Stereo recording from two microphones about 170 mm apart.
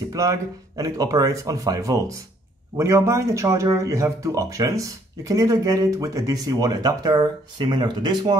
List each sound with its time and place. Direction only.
0.1 s speech: 20° right (ahead or behind)